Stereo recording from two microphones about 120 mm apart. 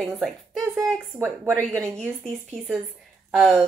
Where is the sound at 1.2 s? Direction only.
15° right (ahead or behind).